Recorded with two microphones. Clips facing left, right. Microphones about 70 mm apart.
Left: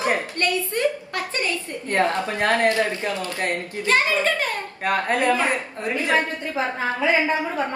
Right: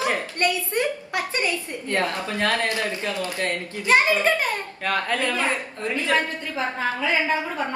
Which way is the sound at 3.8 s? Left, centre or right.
Right.